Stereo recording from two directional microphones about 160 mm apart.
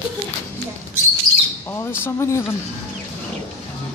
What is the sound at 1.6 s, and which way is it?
Speech, 15° left (ahead or behind).